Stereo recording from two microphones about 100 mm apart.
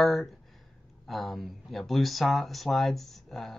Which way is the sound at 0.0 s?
Centre (ahead or behind).